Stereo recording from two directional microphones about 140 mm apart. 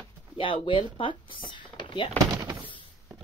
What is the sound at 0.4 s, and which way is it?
Speech, 35° left (ahead or behind).